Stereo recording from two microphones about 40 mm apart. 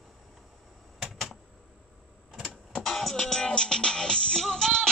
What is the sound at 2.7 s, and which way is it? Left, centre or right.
Music, centre.